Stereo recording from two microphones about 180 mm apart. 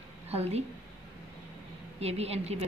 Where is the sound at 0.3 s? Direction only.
35° right (ahead or behind).